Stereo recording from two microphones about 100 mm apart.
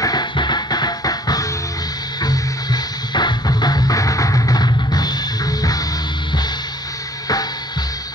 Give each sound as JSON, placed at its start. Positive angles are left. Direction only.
{"t": 0.0, "sound": "music", "side_deg": 45}